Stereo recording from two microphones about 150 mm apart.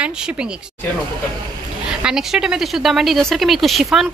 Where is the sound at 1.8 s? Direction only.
5° right (ahead or behind).